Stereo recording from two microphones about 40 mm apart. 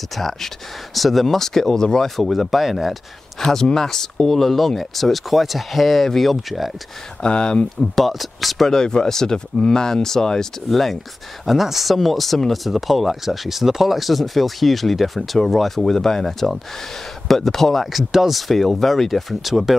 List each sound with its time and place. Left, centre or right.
0.2 s speech: centre
7.2 s speech: left
7.8 s speech: centre
8.8 s speech: centre
17.9 s speech: centre